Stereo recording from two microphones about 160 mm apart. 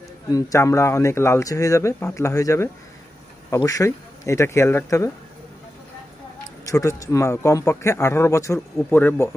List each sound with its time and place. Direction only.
0.3 s speech: 20° left (ahead or behind)
6.6 s speech: 20° left (ahead or behind)